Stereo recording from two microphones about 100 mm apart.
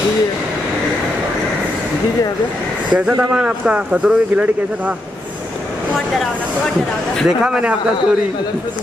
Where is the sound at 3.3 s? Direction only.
10° right (ahead or behind).